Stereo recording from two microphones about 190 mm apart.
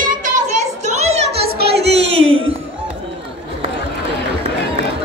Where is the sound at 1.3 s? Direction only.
55° right (ahead or behind).